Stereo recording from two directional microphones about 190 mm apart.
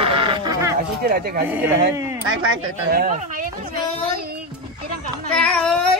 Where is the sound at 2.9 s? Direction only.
50° right (ahead or behind).